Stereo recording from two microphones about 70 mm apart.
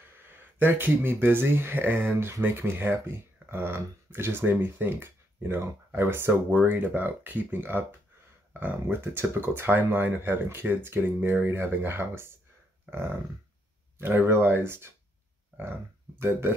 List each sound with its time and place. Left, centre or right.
0.6 s speech: right
13.9 s speech: right
16.2 s speech: right